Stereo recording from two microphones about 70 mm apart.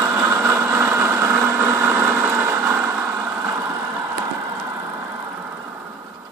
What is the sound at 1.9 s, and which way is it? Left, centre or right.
Vehicle, right.